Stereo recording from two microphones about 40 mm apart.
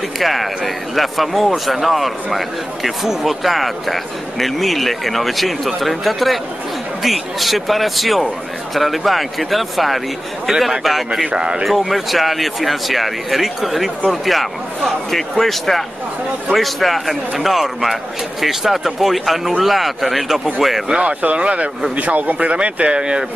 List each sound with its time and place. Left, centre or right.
0.2 s a man's voice: centre
11.3 s speech: centre
11.6 s a man's voice: centre
20.9 s speech: right
21.9 s speech: right